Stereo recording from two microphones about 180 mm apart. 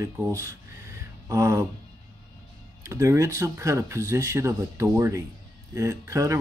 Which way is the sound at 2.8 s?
15° right (ahead or behind).